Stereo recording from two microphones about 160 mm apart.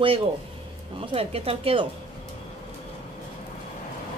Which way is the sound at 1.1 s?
35° right (ahead or behind).